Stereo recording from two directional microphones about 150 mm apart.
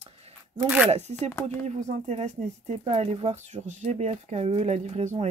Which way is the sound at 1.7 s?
50° right (ahead or behind).